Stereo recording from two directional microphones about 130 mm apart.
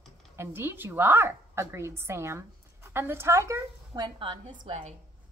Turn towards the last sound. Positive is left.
turn(degrees=-40)  # may be behind; listen again after turning